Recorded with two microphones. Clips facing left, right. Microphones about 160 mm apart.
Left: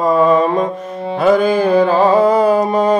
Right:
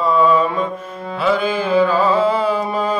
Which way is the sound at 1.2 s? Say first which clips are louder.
Left 6 dB; 45° left (ahead or behind).